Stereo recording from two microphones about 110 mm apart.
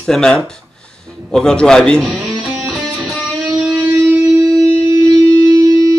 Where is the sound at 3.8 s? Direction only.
25° right (ahead or behind).